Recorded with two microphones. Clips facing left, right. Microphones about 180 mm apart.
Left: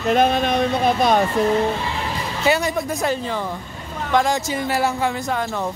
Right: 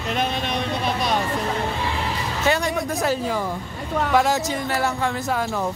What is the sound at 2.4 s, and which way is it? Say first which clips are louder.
Speech: left 2 dB; 5° left (ahead or behind).